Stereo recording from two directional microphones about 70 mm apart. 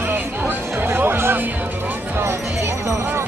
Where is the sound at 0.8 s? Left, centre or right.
Right.